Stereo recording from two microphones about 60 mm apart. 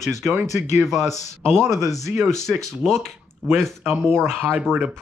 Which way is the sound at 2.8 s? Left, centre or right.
Right.